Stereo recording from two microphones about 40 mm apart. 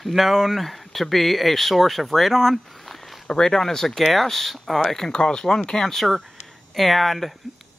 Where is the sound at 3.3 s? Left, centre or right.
Centre.